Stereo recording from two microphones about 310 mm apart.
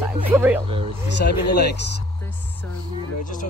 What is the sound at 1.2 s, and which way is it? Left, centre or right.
Speech, left.